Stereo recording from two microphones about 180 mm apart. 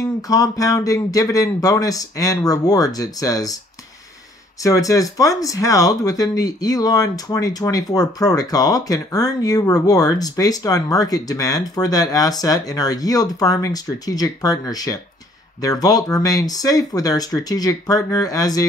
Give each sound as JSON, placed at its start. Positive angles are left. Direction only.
{"t": 0.0, "sound": "speech", "side_deg": 20}
{"t": 4.6, "sound": "speech", "side_deg": 20}